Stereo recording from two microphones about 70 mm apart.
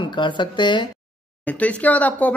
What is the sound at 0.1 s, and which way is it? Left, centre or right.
Speech, left.